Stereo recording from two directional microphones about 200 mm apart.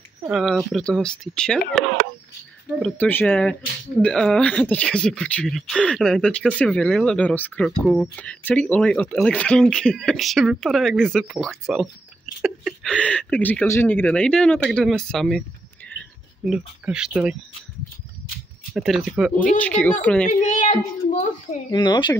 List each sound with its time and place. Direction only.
0.3 s speech: centre (ahead or behind)
2.8 s speech: 10° left (ahead or behind)
18.7 s speech: centre (ahead or behind)
20.2 s a sound: 40° left (ahead or behind)
21.6 s speech: 20° left (ahead or behind)